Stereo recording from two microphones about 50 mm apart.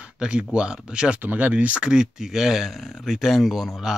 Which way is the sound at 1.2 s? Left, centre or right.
Right.